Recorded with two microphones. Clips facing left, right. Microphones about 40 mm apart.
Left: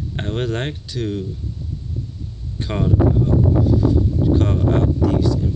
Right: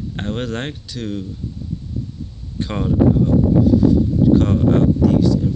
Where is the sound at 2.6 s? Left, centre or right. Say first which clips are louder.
Left 1 dB; centre.